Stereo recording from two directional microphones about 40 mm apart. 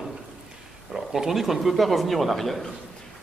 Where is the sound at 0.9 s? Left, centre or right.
Centre.